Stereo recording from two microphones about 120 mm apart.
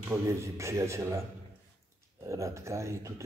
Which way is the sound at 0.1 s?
25° right (ahead or behind).